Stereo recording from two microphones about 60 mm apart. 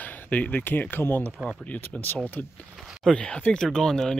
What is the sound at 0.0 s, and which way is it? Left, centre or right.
Speech, left.